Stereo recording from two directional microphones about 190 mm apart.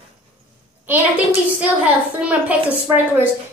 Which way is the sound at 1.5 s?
5° right (ahead or behind).